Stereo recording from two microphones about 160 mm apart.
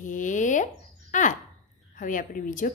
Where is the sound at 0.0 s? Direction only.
50° left (ahead or behind).